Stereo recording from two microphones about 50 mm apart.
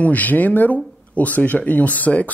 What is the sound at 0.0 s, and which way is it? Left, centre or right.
Speech, left.